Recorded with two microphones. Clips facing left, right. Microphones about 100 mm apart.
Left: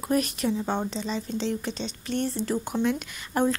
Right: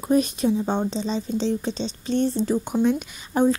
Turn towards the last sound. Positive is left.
turn(degrees=-15)  # may be behind; listen again after turning